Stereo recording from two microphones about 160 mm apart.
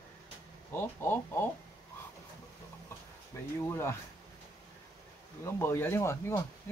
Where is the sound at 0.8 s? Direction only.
15° left (ahead or behind).